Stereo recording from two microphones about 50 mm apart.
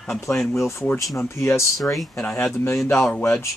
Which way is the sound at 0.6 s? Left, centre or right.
Left.